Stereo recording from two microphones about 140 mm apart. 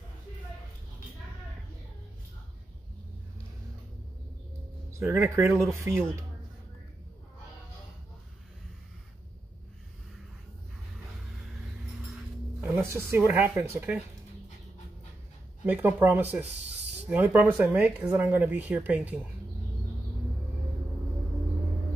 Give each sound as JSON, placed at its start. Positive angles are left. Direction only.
{"t": 4.9, "sound": "speech", "side_deg": -15}
{"t": 12.5, "sound": "speech", "side_deg": -15}
{"t": 15.6, "sound": "speech", "side_deg": -10}